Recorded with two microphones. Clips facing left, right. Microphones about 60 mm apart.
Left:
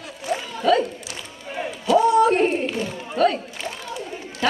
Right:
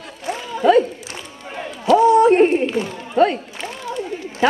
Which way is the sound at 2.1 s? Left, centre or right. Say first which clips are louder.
Right 5 dB; right.